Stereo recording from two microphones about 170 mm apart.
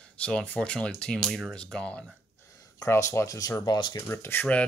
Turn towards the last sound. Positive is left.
turn(degrees=10)  # may be behind; listen again after turning